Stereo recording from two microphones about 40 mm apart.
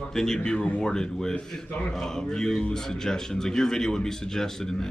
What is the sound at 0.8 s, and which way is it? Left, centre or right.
A man's voice, centre.